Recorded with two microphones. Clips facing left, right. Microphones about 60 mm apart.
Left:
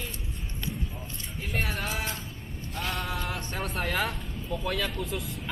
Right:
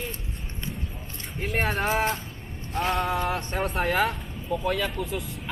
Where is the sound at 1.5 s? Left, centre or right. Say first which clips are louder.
Right 7 dB; right.